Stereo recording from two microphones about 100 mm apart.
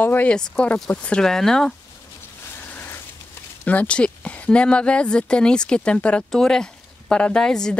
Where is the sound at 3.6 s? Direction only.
15° left (ahead or behind).